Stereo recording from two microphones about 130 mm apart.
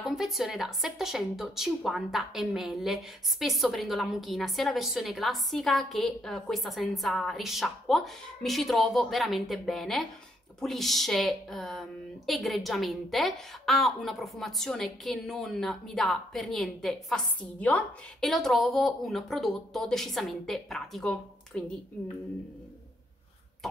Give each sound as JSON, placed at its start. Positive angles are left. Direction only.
{"t": 0.0, "sound": "speech", "side_deg": 0}
{"t": 18.3, "sound": "speech", "side_deg": 0}